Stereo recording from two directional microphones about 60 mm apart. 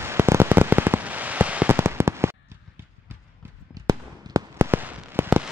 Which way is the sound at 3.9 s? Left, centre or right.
Right.